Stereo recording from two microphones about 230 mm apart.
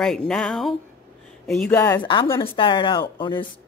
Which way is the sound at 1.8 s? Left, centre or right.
Centre.